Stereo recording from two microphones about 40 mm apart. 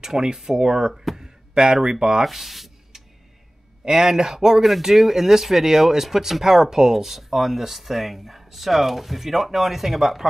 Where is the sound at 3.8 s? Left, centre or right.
Centre.